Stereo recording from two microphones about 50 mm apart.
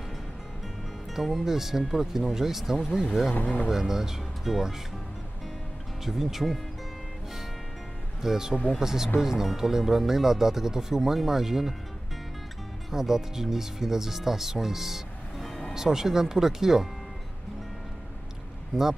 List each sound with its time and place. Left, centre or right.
1.1 s speech: centre
6.0 s speech: centre
8.2 s speech: centre
12.9 s speech: centre
18.7 s speech: centre